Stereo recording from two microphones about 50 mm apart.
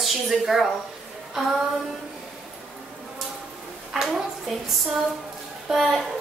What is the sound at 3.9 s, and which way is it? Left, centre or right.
Speech, centre.